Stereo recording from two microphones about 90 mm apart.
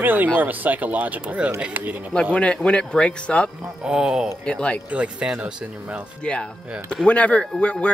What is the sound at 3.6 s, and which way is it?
Speech, 10° right (ahead or behind).